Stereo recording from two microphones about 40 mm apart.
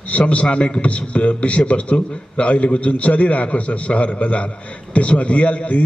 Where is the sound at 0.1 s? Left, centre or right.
Left.